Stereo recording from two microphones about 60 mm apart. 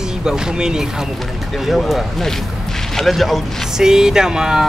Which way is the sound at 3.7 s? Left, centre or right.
Centre.